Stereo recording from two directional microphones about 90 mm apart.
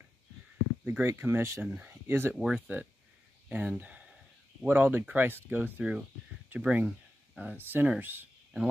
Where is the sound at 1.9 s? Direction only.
25° right (ahead or behind).